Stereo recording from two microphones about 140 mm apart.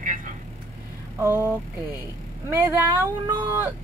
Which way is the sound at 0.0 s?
70° right (ahead or behind).